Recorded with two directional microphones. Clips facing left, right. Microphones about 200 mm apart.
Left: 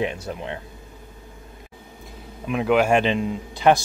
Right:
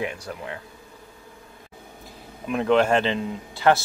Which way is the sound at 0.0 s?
25° left (ahead or behind).